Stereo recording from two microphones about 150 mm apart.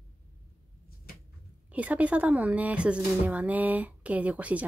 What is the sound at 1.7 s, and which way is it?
Speech, 10° right (ahead or behind).